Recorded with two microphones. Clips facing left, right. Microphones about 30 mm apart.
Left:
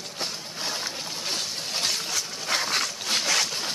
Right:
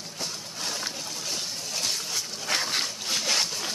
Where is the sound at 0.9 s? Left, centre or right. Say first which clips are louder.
Left 3 dB; left.